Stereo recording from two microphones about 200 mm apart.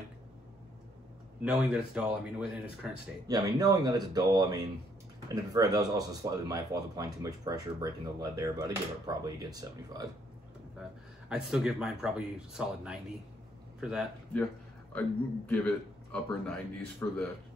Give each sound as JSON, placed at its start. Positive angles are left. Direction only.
{"t": 1.4, "sound": "speech", "side_deg": -5}
{"t": 3.3, "sound": "speech", "side_deg": -20}
{"t": 11.2, "sound": "a man's voice", "side_deg": -5}